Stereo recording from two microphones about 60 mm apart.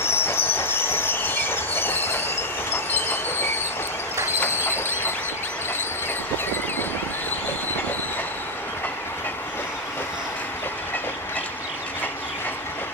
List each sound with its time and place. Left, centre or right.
0.0 s train: left
4.4 s train: left